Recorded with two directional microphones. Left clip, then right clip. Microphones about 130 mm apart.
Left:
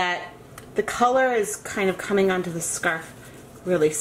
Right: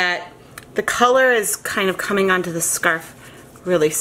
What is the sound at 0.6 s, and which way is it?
Speech, 35° right (ahead or behind).